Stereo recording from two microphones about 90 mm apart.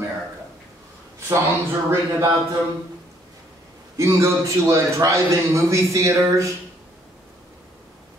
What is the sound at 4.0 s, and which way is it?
A man's voice, 35° right (ahead or behind).